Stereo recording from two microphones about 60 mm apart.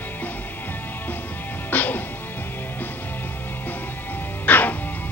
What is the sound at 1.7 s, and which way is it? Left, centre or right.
Music, left.